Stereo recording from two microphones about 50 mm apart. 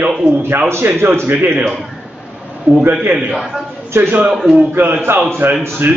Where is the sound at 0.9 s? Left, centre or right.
Right.